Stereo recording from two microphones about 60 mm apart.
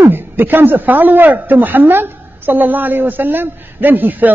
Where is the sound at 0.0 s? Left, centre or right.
Right.